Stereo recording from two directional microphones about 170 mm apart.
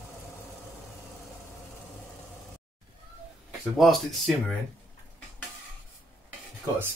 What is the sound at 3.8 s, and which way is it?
Speech, centre (ahead or behind).